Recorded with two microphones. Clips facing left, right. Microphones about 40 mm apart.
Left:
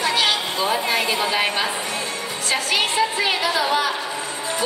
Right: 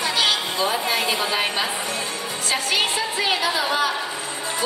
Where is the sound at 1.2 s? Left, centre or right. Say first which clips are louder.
Left 2 dB; centre.